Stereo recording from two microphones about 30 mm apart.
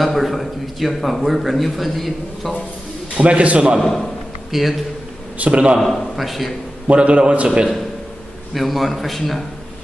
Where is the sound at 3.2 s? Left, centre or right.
Right.